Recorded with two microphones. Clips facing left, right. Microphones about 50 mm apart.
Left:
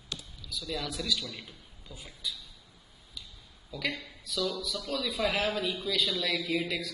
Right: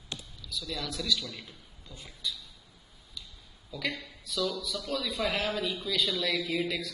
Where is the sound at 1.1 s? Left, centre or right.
Left.